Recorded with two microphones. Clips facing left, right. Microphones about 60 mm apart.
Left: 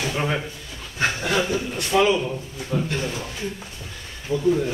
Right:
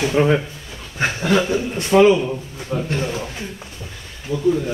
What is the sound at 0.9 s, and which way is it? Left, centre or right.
Chuckle, right.